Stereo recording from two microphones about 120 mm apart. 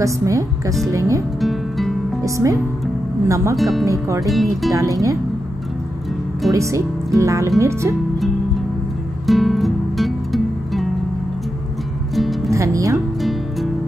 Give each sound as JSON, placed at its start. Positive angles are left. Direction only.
{"t": 0.0, "sound": "speech", "side_deg": -25}
{"t": 1.4, "sound": "music", "side_deg": 0}
{"t": 2.2, "sound": "speech", "side_deg": -25}
{"t": 3.5, "sound": "speech", "side_deg": 0}
{"t": 3.8, "sound": "speech", "side_deg": -25}
{"t": 4.3, "sound": "speech", "side_deg": 0}
{"t": 4.7, "sound": "speech", "side_deg": -30}
{"t": 6.5, "sound": "speech", "side_deg": -25}
{"t": 9.2, "sound": "music", "side_deg": 0}
{"t": 12.4, "sound": "speech", "side_deg": -25}